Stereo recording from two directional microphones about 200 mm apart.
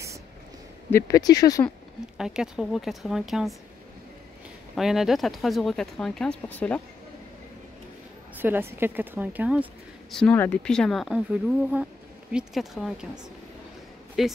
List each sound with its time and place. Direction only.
0.9 s speech: 15° left (ahead or behind)
2.1 s speech: 5° right (ahead or behind)
4.7 s speech: centre (ahead or behind)
8.4 s speech: 10° right (ahead or behind)
10.1 s speech: 5° left (ahead or behind)
14.2 s speech: centre (ahead or behind)